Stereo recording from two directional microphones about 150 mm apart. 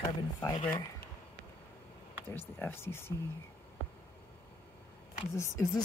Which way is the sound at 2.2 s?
15° left (ahead or behind).